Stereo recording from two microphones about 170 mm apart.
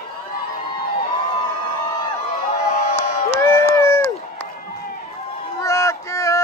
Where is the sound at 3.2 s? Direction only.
15° left (ahead or behind).